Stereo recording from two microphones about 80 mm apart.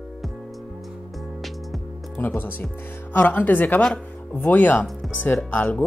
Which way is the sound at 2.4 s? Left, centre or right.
Left.